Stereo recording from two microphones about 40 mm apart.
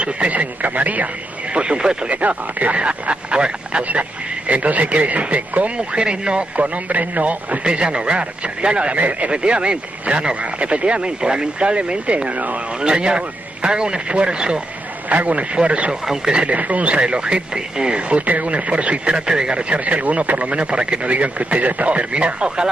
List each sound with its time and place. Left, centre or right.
0.0 s speech: right
1.5 s speech: right
2.0 s speech: right
4.5 s speech: right
6.0 s speech: right
7.6 s speech: right
9.3 s speech: right
12.8 s speech: right
15.0 s speech: right; by 16.4 s centre
16.4 s speech: right
17.0 s speech: right
19.2 s speech: centre
19.7 s speech: right